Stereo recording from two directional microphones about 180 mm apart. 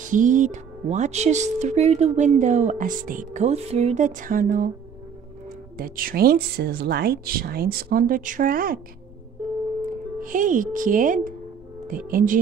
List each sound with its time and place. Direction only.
0.0 s speech: 45° right (ahead or behind)
5.8 s speech: 50° right (ahead or behind)
10.2 s speech: 45° right (ahead or behind)